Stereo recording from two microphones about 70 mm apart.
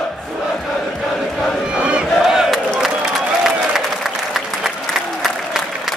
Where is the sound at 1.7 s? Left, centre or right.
Centre.